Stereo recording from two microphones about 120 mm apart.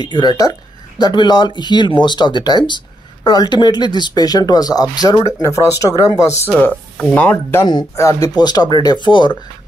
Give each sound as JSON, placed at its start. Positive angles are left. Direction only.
{"t": 0.0, "sound": "speech", "side_deg": 40}
{"t": 6.5, "sound": "speech", "side_deg": 10}
{"t": 7.6, "sound": "speech", "side_deg": 30}